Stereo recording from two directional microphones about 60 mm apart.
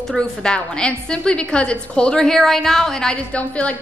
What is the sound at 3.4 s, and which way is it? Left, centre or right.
Speech, left.